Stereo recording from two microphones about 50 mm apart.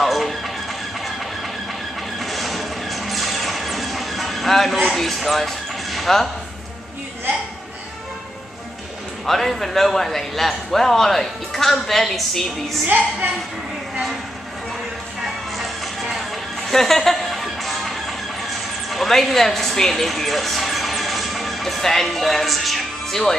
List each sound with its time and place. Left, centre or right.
0.0 s music: centre
2.1 s a sound: centre
9.2 s a man's voice: centre
12.8 s a woman's voice: right
15.5 s music: centre